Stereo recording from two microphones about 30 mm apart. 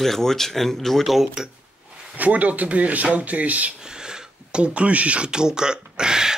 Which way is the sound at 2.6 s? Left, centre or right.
Right.